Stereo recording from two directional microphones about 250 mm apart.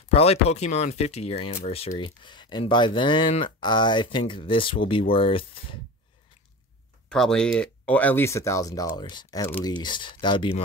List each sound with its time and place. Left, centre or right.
0.1 s speech: left
7.1 s speech: centre